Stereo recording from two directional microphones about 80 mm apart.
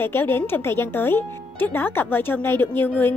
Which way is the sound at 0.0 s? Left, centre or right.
Left.